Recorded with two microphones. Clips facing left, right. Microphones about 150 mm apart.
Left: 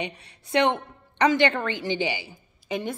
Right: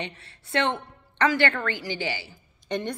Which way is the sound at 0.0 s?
15° left (ahead or behind).